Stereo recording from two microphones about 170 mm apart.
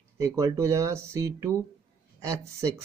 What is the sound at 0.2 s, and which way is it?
Speech, 15° right (ahead or behind).